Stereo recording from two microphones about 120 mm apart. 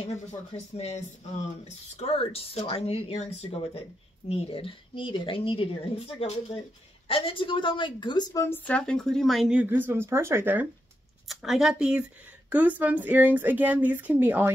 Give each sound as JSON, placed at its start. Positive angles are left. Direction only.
{"t": 0.7, "sound": "speech", "side_deg": 60}
{"t": 8.6, "sound": "speech", "side_deg": 10}
{"t": 11.2, "sound": "speech", "side_deg": -5}